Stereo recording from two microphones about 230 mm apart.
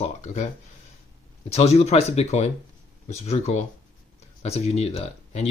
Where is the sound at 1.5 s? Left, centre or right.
Left.